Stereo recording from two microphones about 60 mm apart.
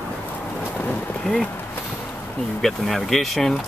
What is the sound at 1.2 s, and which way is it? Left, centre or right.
Speech, centre.